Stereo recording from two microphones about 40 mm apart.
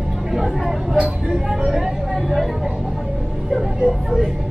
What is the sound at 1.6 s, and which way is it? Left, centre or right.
Vehicle, centre.